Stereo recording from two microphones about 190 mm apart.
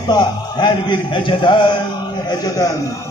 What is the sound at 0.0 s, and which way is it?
A man's voice, 20° left (ahead or behind).